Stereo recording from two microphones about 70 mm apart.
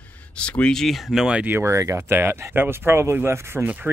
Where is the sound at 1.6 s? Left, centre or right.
Right.